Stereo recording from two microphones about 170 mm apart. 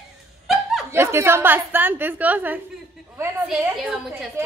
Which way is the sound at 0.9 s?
15° right (ahead or behind).